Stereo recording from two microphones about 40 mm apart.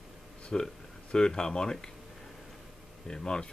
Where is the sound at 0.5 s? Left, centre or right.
Centre.